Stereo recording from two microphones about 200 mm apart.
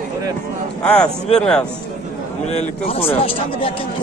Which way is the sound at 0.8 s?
5° left (ahead or behind).